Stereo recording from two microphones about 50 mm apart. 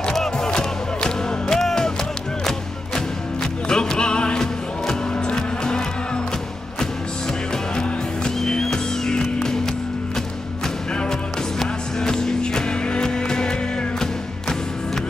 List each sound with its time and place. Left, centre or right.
0.0 s music: centre
3.6 s music: centre
7.7 s music: centre
11.6 s music: centre